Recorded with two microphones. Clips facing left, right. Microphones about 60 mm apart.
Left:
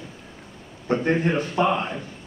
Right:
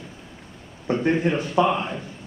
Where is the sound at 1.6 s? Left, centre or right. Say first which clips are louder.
Even; left.